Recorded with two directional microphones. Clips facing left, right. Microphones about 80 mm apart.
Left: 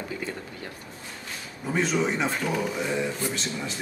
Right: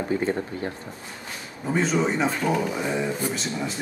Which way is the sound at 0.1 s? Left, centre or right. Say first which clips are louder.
Right 9 dB; right.